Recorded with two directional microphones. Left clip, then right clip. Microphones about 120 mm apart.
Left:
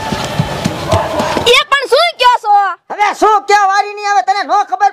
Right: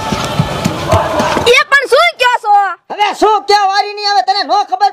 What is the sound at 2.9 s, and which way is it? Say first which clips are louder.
Speech: left 1 dB; 10° right (ahead or behind).